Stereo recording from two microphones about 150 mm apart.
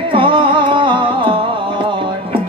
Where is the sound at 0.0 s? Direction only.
35° right (ahead or behind).